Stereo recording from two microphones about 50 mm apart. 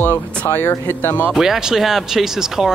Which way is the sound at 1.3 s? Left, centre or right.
Centre.